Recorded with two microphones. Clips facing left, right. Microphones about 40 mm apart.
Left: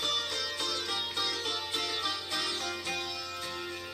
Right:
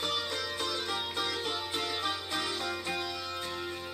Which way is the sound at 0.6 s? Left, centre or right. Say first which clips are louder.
Right 1 dB; right.